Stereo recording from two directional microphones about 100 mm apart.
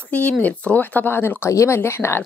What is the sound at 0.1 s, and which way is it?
A woman's voice, 15° left (ahead or behind).